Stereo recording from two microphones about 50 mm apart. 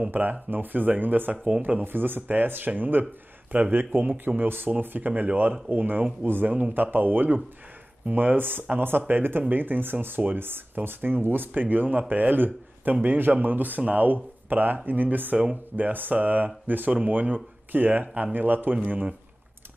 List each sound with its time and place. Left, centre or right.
0.1 s speech: right